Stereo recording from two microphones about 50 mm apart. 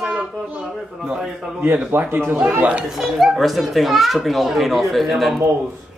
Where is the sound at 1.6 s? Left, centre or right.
Right.